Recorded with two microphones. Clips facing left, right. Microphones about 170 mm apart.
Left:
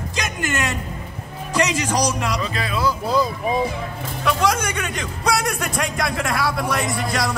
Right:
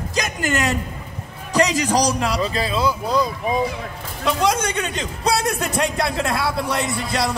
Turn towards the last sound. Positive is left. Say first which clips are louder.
# even
turn(degrees=-25)  # may be behind; listen again after turning